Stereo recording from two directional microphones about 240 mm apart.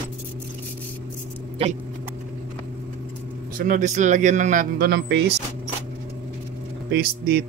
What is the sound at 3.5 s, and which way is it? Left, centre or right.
Speech, right.